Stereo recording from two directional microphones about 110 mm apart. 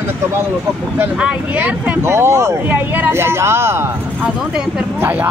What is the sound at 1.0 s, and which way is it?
Speech, 15° right (ahead or behind).